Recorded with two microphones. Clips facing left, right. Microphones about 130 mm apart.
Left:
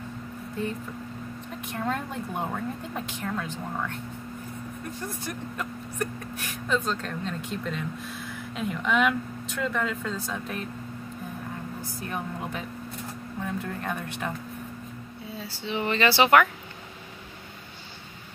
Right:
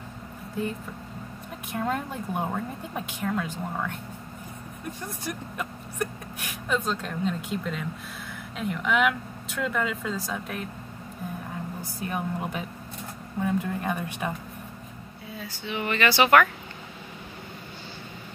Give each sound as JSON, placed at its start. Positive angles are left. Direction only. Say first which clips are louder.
{"t": 1.8, "sound": "speech", "louder": "right 1 dB", "side_deg": -10}
{"t": 5.0, "sound": "speech", "louder": "even", "side_deg": -15}
{"t": 11.8, "sound": "speech", "louder": "right 3 dB", "side_deg": -10}
{"t": 15.3, "sound": "speech", "louder": "left 1 dB", "side_deg": 30}